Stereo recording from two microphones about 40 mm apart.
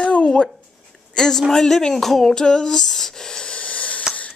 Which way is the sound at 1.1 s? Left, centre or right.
Centre.